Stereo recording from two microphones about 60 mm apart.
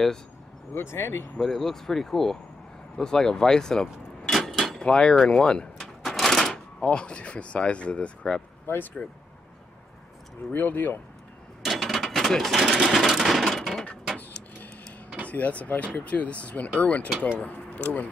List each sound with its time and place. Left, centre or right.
0.7 s speech: left
1.4 s speech: centre
3.0 s vehicle: centre
4.8 s speech: centre
5.3 s a sound: centre
6.5 s speech: centre
8.6 s speech: left
10.5 s speech: left
11.6 s cash register: centre
12.7 s a sound: centre
15.2 s speech: left